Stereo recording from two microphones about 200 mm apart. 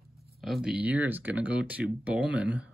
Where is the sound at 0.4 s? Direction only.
Centre (ahead or behind).